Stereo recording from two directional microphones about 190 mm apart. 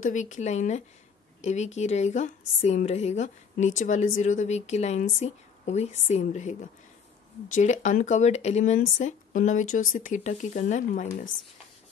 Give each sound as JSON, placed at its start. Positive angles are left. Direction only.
{"t": 0.0, "sound": "speech", "side_deg": 40}